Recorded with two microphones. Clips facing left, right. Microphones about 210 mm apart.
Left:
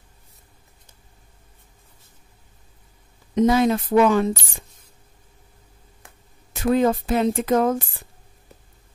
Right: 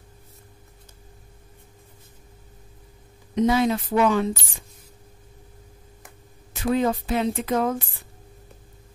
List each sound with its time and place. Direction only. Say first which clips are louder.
3.3 s speech: left 3 dB; 45° left (ahead or behind)
6.5 s speech: left 3 dB; 45° left (ahead or behind)